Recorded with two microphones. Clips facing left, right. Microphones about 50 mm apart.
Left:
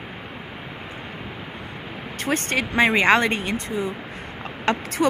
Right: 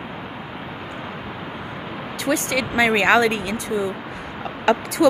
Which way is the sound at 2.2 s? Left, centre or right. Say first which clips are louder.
Right 2 dB; left.